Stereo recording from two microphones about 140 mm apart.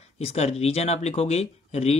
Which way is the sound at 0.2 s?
50° left (ahead or behind).